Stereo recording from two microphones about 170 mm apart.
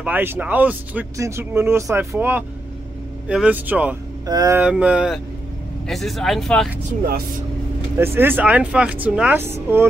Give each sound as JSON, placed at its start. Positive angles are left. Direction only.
{"t": 0.0, "sound": "speech", "side_deg": -10}
{"t": 4.3, "sound": "speech", "side_deg": -20}
{"t": 4.6, "sound": "speech", "side_deg": -5}
{"t": 8.0, "sound": "speech", "side_deg": -15}